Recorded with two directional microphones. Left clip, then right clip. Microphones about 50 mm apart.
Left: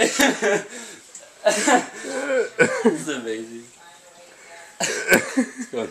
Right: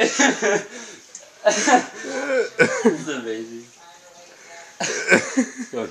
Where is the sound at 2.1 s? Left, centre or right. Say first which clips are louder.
Right 1 dB; centre.